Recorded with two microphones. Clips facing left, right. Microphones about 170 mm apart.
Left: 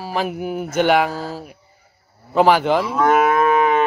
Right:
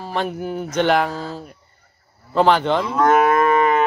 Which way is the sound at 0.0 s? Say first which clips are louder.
Left 1 dB; 5° left (ahead or behind).